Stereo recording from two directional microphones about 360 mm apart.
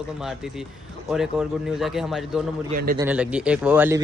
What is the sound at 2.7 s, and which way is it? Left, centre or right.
Speech, right.